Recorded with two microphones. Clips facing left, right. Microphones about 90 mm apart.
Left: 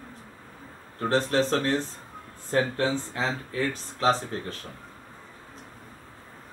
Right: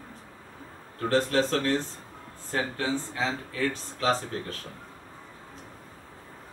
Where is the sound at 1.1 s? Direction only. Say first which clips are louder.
Left 1 dB; 30° left (ahead or behind).